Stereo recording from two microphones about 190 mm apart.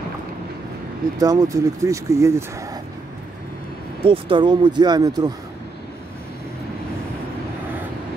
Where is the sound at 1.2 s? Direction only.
20° right (ahead or behind).